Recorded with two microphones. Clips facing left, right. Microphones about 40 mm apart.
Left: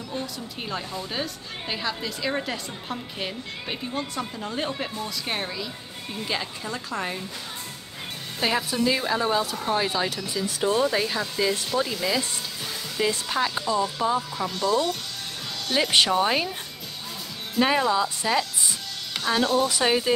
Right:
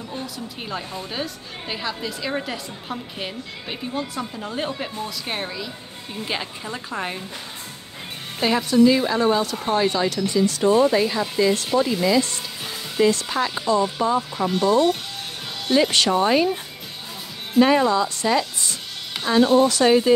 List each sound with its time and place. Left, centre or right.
1.1 s a woman's voice: centre
6.2 s a woman's voice: centre
8.4 s a woman's voice: centre
10.7 s a woman's voice: centre
13.7 s speech: centre
14.5 s a woman's voice: right
16.1 s a woman's voice: centre
17.6 s a woman's voice: centre
19.2 s speech: centre
19.8 s a woman's voice: centre